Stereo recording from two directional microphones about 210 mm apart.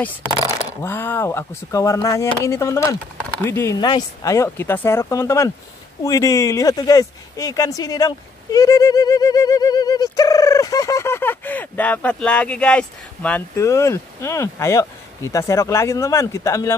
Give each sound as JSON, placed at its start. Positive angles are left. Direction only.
{"t": 0.7, "sound": "speech", "side_deg": 10}